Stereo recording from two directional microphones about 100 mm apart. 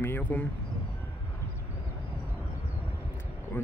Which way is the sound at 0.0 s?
20° left (ahead or behind).